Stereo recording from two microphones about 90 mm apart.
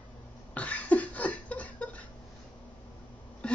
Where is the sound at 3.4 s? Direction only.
10° left (ahead or behind).